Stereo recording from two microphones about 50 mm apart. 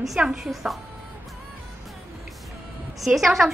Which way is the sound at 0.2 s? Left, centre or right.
Centre.